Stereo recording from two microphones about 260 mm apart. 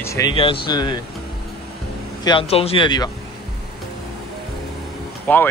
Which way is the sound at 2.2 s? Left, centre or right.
Left.